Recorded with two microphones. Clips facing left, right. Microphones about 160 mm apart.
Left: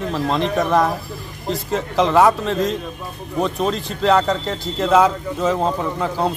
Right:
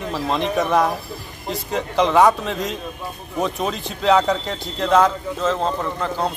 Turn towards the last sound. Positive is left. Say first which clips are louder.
# left 2 dB
turn(degrees=5)  # may be behind; listen again after turning